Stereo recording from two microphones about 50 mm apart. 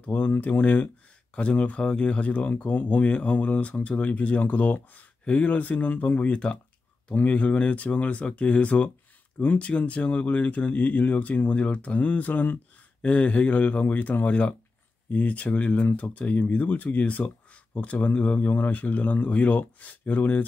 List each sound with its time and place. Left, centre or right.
0.0 s speech: left
6.3 s speech: left
15.8 s speech: left